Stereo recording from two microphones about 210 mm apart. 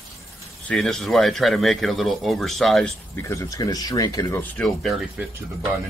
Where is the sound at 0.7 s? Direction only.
Centre (ahead or behind).